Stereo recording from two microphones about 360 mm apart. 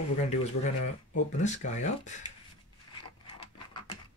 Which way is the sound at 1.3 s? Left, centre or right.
Centre.